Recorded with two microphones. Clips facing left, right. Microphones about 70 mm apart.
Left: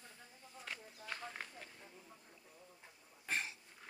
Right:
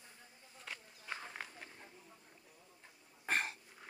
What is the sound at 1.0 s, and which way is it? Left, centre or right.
Run, centre.